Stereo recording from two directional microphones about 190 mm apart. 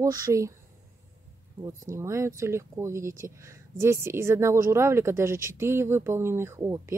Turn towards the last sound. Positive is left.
turn(degrees=-15)  # may be behind; listen again after turning